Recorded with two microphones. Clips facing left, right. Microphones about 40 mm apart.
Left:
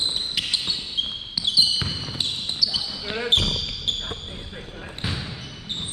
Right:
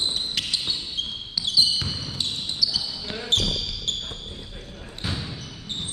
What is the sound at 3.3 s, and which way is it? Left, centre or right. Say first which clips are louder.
Basketball bounce: left 1 dB; left.